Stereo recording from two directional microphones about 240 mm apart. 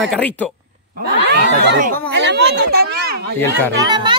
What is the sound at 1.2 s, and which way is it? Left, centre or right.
Speech, right.